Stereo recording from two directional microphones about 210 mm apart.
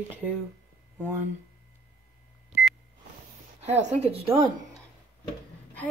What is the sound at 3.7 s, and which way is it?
Speech, 35° right (ahead or behind).